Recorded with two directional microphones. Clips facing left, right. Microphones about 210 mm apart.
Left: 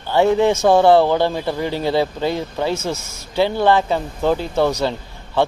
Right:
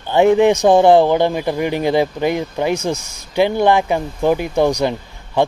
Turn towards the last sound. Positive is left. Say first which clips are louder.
# right 2 dB
turn(degrees=-15)  # may be behind; listen again after turning